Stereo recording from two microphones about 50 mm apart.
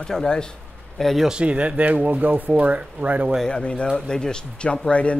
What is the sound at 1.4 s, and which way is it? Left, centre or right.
Speech, right.